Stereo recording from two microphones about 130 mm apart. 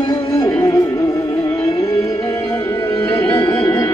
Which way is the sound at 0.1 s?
30° left (ahead or behind).